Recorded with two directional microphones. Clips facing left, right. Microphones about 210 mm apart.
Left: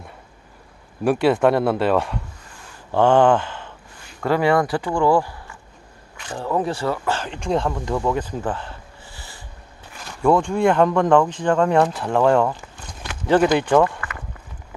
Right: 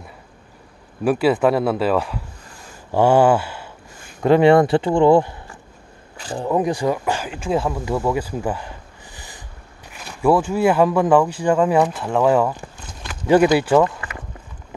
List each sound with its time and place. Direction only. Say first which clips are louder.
1.0 s speech: even; centre (ahead or behind)
4.2 s speech: right 6 dB; 25° right (ahead or behind); by 13.8 s 5° right (ahead or behind)